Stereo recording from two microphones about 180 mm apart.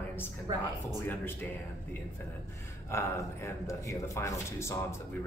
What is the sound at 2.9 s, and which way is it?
Speech, 15° left (ahead or behind).